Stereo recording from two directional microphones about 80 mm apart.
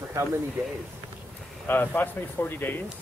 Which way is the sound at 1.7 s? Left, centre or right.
Left.